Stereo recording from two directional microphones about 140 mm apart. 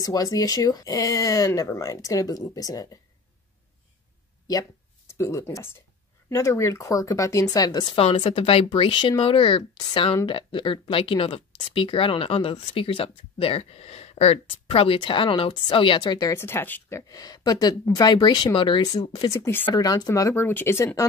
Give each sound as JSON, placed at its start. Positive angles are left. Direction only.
{"t": 0.0, "sound": "speech", "side_deg": 25}
{"t": 4.5, "sound": "speech", "side_deg": 20}
{"t": 17.1, "sound": "speech", "side_deg": 25}